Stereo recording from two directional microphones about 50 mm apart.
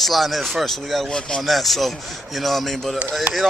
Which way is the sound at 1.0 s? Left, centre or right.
Centre.